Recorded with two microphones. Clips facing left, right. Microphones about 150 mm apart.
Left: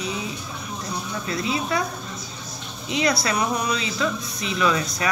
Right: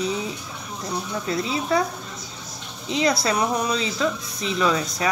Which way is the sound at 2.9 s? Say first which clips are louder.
Right 1 dB; 30° right (ahead or behind).